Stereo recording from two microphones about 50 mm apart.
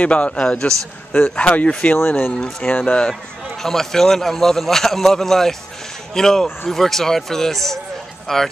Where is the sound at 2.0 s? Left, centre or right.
Left.